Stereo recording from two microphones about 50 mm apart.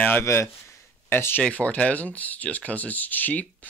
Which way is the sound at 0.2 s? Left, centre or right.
Left.